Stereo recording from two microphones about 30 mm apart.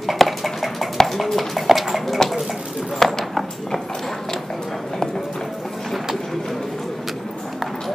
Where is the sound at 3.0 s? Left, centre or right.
Centre.